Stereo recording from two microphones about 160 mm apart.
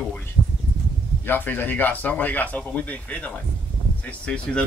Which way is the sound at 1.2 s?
10° left (ahead or behind).